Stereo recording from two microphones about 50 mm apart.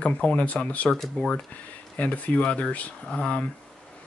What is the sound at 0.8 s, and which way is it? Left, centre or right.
Speech, centre.